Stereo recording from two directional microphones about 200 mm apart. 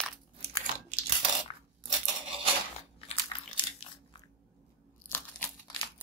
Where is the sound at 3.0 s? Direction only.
30° left (ahead or behind).